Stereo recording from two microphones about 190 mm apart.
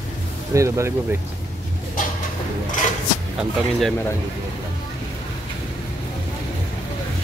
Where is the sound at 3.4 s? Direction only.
Centre (ahead or behind).